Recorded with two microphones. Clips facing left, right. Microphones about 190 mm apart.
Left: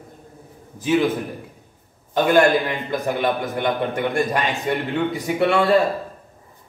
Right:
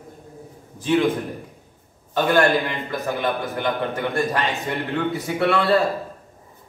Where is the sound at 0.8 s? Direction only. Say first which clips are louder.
Left 1 dB; 10° left (ahead or behind).